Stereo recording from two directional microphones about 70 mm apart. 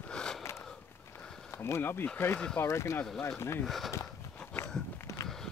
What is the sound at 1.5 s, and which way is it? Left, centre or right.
Speech, left.